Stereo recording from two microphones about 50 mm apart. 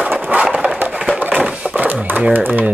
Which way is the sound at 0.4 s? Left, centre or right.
Right.